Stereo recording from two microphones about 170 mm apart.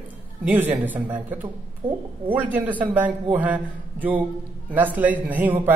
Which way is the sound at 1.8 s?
30° right (ahead or behind).